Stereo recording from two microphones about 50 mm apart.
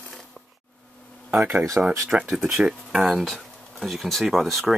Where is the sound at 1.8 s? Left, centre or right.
Right.